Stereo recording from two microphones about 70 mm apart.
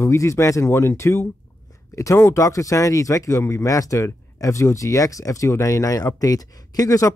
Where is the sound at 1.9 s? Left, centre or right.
Left.